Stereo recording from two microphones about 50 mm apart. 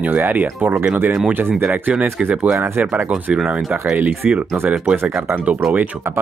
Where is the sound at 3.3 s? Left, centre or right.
Centre.